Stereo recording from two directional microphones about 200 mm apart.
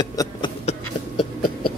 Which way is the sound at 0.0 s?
20° left (ahead or behind).